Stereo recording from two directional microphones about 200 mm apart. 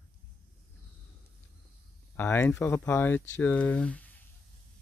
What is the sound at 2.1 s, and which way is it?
Speech, 10° left (ahead or behind).